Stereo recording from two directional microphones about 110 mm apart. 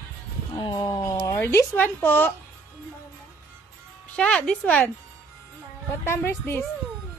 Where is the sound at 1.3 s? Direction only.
20° left (ahead or behind).